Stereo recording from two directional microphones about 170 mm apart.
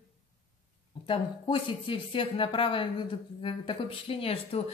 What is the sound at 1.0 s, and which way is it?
A woman's voice, 30° left (ahead or behind).